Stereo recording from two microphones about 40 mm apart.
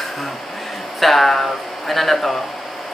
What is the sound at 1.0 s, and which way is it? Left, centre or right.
Speech, centre.